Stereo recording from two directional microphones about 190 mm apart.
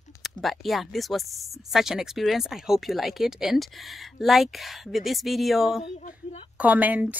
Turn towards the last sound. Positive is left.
turn(degrees=-10)  # may be behind; listen again after turning